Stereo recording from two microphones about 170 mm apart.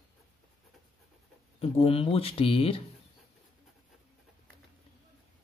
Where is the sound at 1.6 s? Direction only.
35° left (ahead or behind).